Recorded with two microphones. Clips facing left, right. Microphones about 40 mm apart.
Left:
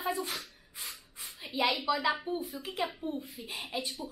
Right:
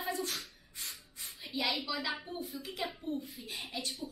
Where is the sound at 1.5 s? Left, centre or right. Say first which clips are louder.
Left 6 dB; left.